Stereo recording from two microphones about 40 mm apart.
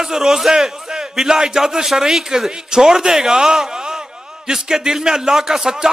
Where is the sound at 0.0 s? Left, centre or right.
Centre.